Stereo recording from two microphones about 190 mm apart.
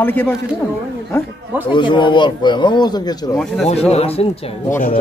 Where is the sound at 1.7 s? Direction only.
25° left (ahead or behind).